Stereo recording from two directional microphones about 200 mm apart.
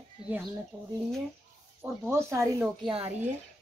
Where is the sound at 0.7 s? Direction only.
20° right (ahead or behind).